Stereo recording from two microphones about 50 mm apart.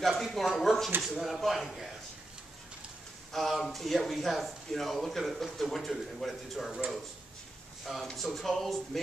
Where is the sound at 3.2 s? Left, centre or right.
Centre.